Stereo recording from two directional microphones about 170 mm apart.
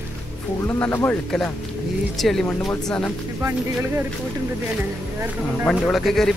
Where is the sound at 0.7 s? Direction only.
15° left (ahead or behind).